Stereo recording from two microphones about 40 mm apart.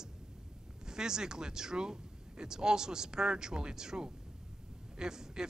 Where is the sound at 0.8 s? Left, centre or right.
Centre.